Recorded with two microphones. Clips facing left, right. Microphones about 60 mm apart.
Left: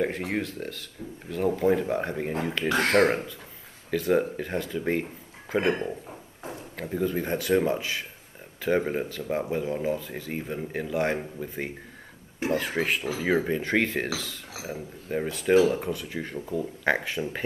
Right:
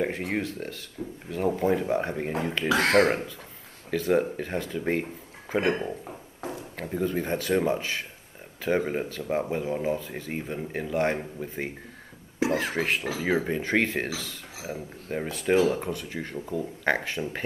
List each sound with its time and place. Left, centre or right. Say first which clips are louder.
0.0 s speech: even; centre
2.7 s speech: right 2 dB; right
3.1 s speech: even; centre
12.7 s speech: even; centre